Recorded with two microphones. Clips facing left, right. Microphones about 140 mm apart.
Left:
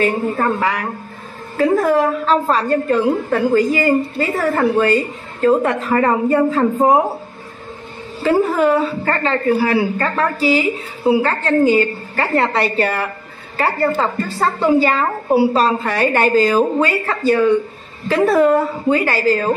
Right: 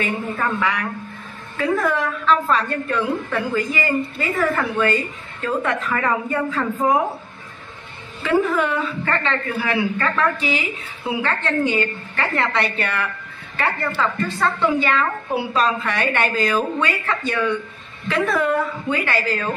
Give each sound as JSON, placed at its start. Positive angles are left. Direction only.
{"t": 0.0, "sound": "a woman's voice", "side_deg": 40}
{"t": 8.2, "sound": "a woman's voice", "side_deg": 35}